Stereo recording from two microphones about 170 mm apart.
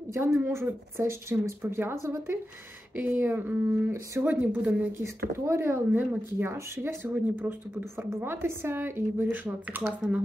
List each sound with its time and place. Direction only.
0.1 s speech: 15° right (ahead or behind)
3.0 s speech: 10° right (ahead or behind)